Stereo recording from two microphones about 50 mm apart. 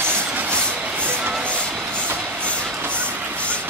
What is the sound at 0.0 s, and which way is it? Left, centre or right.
Train, right.